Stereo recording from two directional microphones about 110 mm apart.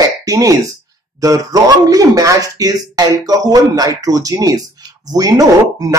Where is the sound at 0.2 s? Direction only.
30° right (ahead or behind).